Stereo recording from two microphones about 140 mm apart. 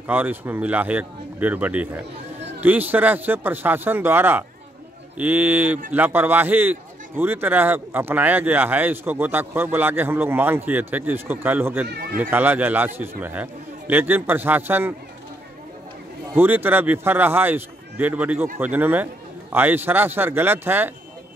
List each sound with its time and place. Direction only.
0.0 s a man's voice: 15° right (ahead or behind)
16.3 s a man's voice: 15° right (ahead or behind)